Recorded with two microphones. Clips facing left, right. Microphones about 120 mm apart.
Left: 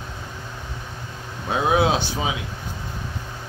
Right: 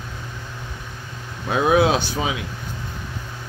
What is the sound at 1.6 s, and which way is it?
Speech, 25° left (ahead or behind).